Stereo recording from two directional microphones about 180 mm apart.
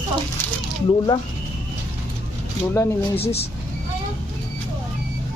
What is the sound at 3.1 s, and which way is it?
Speech, 35° left (ahead or behind).